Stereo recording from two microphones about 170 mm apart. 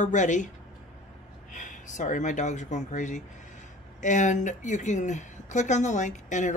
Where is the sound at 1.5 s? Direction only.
50° left (ahead or behind).